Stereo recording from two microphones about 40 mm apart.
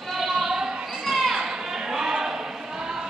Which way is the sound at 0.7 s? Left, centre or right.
Centre.